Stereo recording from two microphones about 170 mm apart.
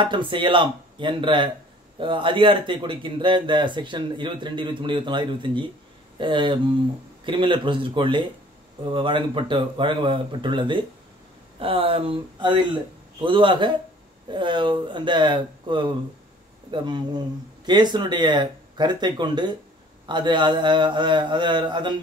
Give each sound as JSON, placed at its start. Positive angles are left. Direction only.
{"t": 0.0, "sound": "speech", "side_deg": -30}